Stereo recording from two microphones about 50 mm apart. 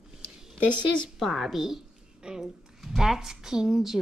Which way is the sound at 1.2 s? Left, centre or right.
Centre.